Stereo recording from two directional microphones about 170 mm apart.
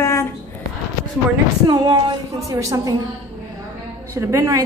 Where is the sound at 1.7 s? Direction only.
25° right (ahead or behind).